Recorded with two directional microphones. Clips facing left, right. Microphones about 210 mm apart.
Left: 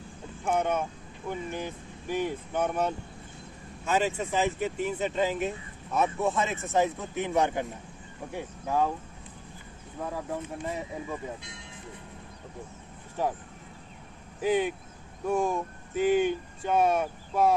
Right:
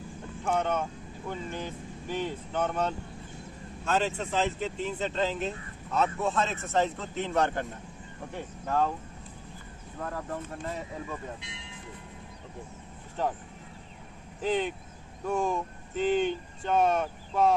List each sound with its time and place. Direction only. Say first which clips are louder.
0.4 s speech: left 1 dB; 10° left (ahead or behind)
9.9 s speech: left 2 dB; 10° left (ahead or behind)
13.2 s speech: left 1 dB; 10° left (ahead or behind)
14.4 s speech: left 3 dB; 10° left (ahead or behind)